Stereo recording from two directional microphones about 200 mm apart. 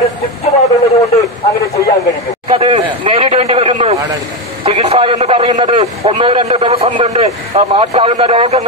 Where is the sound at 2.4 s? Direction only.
30° right (ahead or behind).